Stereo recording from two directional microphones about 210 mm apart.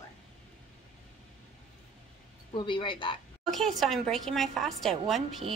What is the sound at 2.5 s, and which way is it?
Speech, 25° left (ahead or behind).